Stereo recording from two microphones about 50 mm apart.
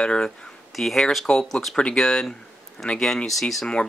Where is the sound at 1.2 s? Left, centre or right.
Centre.